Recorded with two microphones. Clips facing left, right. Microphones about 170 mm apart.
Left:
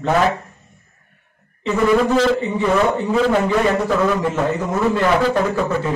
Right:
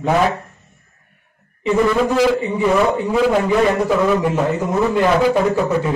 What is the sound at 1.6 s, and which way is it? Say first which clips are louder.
A man's voice: even; 10° right (ahead or behind).